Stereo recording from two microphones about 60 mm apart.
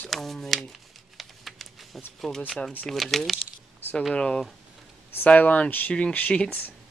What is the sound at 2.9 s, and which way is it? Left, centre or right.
Speech, centre.